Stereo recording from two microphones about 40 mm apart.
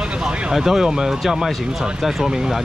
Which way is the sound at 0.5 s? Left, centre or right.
Centre.